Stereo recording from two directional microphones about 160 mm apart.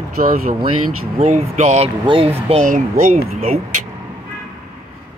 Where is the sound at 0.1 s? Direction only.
60° right (ahead or behind).